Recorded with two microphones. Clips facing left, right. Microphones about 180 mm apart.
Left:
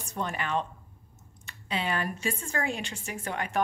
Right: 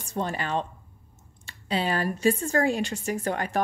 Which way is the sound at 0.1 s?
35° right (ahead or behind).